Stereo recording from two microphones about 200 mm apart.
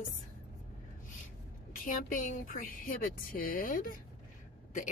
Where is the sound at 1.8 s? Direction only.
40° left (ahead or behind).